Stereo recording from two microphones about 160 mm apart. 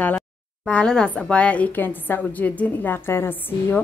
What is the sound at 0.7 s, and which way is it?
A woman's voice, 5° left (ahead or behind).